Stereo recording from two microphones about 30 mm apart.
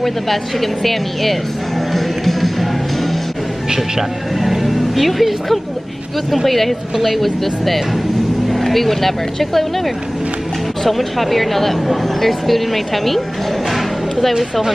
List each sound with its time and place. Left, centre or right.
0.0 s a woman's voice: centre
1.9 s music: centre
4.4 s music: centre
6.3 s a woman's voice: centre
10.8 s a woman's voice: centre
13.7 s music: centre